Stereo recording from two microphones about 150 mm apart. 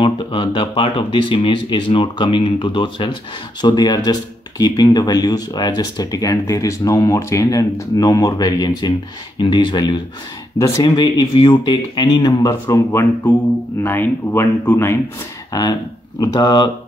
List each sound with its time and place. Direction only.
0.0 s speech: 30° left (ahead or behind)
12.7 s speech: 15° left (ahead or behind); by 16.7 s 30° left (ahead or behind)